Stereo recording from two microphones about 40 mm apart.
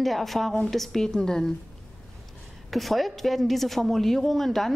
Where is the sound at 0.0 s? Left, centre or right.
Centre.